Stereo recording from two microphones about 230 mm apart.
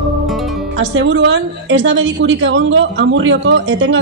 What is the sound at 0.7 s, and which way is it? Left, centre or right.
A woman's voice, right.